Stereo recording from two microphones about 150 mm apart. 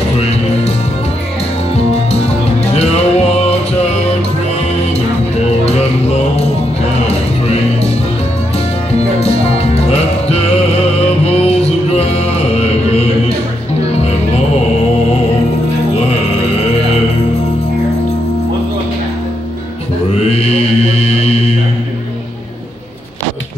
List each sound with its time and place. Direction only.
0.2 s music: 45° left (ahead or behind)
2.7 s music: 45° left (ahead or behind)
5.7 s music: 45° left (ahead or behind)
9.2 s music: 45° left (ahead or behind)
20.2 s mantra: 45° left (ahead or behind)